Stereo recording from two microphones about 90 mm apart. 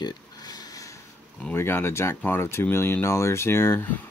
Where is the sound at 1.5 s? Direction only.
25° left (ahead or behind).